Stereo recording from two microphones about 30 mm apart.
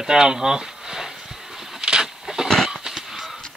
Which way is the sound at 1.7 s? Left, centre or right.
Right.